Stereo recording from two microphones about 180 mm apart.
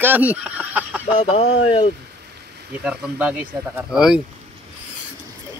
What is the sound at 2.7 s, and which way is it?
Speech, 5° right (ahead or behind).